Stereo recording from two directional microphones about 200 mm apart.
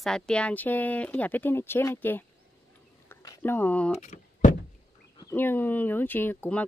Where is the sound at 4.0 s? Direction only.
40° left (ahead or behind).